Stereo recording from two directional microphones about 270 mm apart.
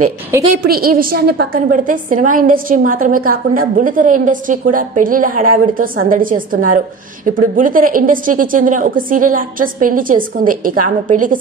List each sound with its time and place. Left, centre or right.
0.6 s a woman's voice: right